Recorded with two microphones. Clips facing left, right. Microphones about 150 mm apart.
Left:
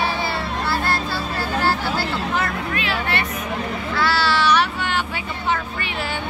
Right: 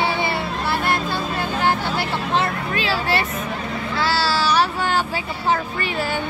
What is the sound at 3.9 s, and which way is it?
Child singing, 30° right (ahead or behind).